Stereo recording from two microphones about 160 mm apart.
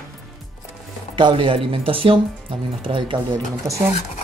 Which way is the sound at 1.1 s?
30° right (ahead or behind).